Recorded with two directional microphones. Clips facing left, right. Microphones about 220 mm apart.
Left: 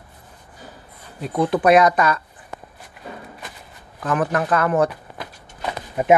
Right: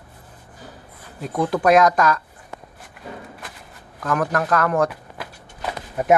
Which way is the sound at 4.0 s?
Centre (ahead or behind).